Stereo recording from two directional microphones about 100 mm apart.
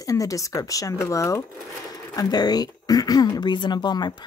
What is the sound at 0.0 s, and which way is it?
Speech, 35° left (ahead or behind).